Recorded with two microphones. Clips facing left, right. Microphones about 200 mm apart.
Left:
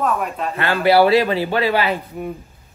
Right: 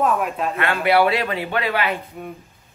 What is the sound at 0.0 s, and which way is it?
Speech, centre (ahead or behind).